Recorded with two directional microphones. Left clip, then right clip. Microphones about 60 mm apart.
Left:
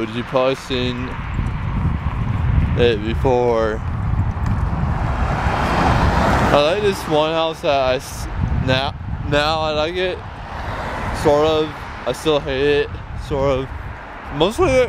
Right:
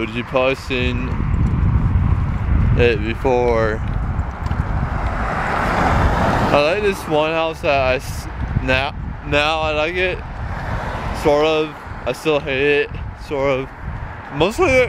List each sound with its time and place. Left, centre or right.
0.0 s speech: centre
2.8 s speech: centre
5.1 s vehicle: right
6.3 s speech: centre
9.6 s speech: centre
11.1 s speech: centre
14.4 s speech: centre